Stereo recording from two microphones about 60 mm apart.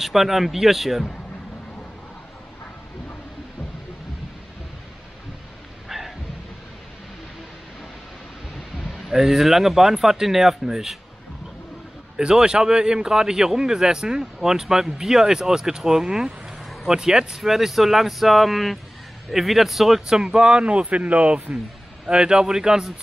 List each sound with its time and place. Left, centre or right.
0.0 s speech: centre
5.9 s rain: centre
8.7 s a man's voice: centre
12.2 s a man's voice: centre
20.2 s a man's voice: centre